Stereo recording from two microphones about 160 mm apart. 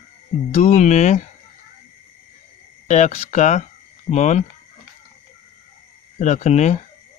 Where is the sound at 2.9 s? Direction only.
45° left (ahead or behind).